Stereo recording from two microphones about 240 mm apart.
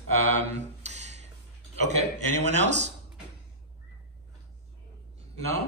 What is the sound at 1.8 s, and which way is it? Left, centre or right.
Speech, left.